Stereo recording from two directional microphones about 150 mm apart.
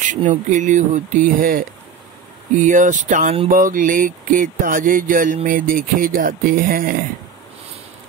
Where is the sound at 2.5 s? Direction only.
55° right (ahead or behind).